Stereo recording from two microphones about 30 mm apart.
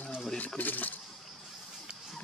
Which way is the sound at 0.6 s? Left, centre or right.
Left.